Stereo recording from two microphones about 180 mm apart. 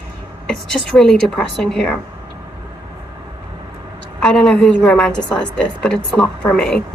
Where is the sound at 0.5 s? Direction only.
5° left (ahead or behind).